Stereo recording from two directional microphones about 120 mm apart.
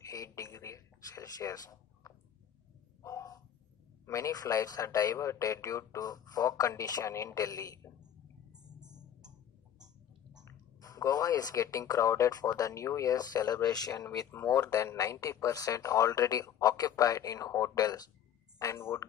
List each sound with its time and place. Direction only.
0.0 s a sound: 30° left (ahead or behind)
4.0 s a man's voice: 25° left (ahead or behind)
8.8 s music: 35° right (ahead or behind)
10.4 s speech: 30° left (ahead or behind)